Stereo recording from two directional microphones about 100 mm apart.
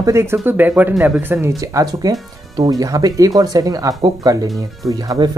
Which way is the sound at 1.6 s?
35° right (ahead or behind).